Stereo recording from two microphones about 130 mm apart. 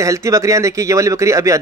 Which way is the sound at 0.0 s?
25° right (ahead or behind).